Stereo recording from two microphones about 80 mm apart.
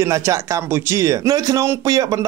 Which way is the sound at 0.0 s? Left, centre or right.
Right.